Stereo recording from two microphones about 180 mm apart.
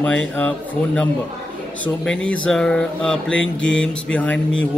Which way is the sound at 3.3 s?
90° left.